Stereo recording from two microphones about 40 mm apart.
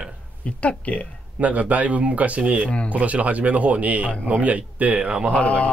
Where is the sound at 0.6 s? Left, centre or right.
Left.